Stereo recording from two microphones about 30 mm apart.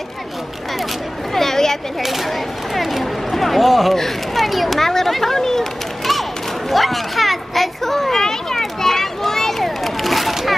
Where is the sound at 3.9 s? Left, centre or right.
Centre.